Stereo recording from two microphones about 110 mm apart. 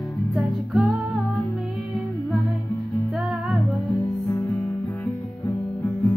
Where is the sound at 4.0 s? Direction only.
20° left (ahead or behind).